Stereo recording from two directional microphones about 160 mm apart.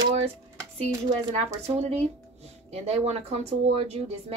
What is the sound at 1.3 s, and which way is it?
Speech, 40° right (ahead or behind).